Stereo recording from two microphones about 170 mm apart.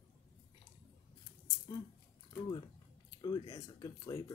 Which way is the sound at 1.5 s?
25° left (ahead or behind).